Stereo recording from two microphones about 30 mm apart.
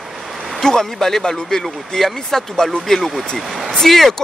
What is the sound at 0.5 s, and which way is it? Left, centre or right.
Speech, centre.